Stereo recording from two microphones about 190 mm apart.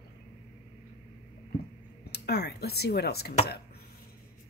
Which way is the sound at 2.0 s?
60° left (ahead or behind).